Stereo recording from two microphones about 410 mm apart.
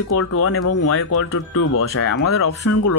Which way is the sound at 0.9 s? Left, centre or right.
Left.